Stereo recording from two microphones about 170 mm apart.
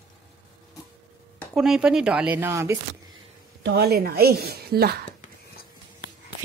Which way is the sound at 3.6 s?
70° right (ahead or behind).